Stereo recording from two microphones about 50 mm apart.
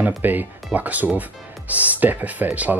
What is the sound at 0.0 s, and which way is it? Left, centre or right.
Speech, right.